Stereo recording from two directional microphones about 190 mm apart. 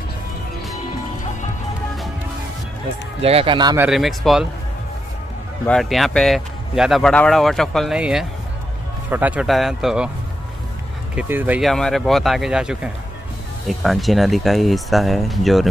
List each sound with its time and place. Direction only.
3.2 s speech: 30° right (ahead or behind)
3.7 s speech: 5° right (ahead or behind)
5.7 s speech: centre (ahead or behind)
11.1 s speech: 10° right (ahead or behind)
11.7 s speech: centre (ahead or behind)